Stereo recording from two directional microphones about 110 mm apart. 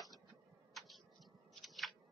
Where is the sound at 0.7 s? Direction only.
Centre (ahead or behind).